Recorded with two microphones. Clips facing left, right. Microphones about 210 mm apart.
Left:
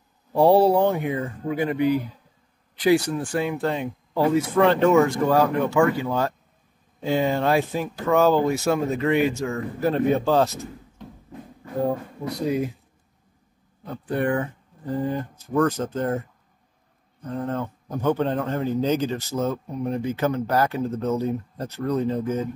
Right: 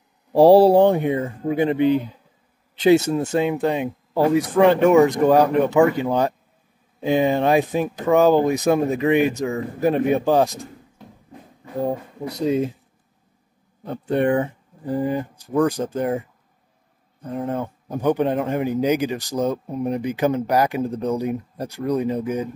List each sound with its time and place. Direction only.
0.3 s a man's voice: 35° right (ahead or behind); by 10.7 s 15° right (ahead or behind)
11.8 s speech: 20° right (ahead or behind)
13.8 s speech: 25° right (ahead or behind)
14.9 s a man's voice: 10° right (ahead or behind)